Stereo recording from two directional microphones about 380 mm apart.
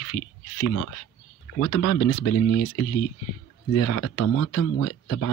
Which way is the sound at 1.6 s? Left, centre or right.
Left.